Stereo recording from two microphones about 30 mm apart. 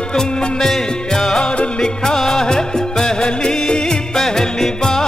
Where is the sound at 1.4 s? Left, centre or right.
Left.